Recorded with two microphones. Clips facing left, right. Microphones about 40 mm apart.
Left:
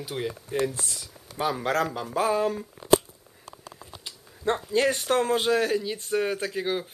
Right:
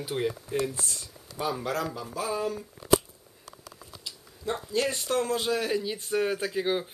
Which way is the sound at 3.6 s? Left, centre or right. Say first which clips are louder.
Left 1 dB; left.